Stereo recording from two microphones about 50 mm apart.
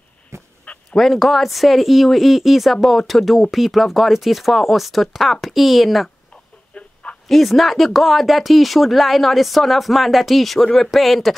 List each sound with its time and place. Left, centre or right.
0.3 s goose: right
0.9 s speech: centre
6.7 s a sound: left
7.2 s speech: centre